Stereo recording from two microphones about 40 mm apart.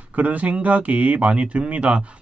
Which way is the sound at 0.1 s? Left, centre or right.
Right.